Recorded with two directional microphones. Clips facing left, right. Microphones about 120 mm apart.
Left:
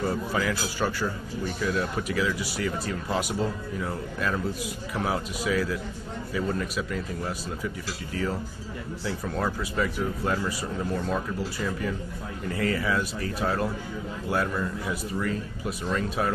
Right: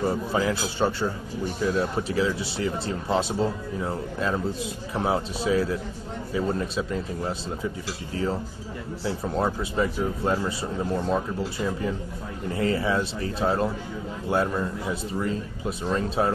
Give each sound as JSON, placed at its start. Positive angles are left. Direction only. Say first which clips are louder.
{"t": 0.0, "sound": "speech", "louder": "right 3 dB", "side_deg": -25}
{"t": 9.0, "sound": "speech", "louder": "right 4 dB", "side_deg": -25}